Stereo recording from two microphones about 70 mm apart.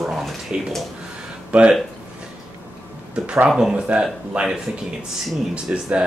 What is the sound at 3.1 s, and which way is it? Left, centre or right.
Speech, centre.